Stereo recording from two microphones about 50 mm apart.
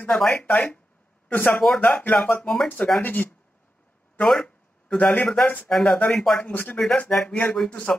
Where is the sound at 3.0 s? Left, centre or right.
Left.